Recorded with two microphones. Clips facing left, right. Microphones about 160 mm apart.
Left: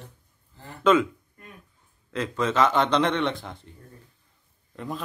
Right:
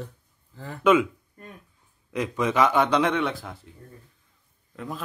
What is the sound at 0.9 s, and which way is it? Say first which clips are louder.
Speech: right 1 dB; 10° right (ahead or behind).